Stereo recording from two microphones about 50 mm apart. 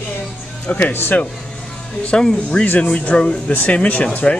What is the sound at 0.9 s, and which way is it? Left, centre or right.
Speech, left.